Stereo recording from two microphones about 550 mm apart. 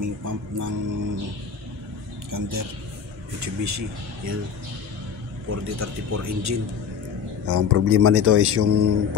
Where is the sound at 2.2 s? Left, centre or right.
Right.